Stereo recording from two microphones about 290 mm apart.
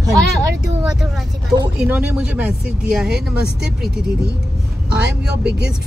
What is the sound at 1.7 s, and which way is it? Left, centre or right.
Speech, centre.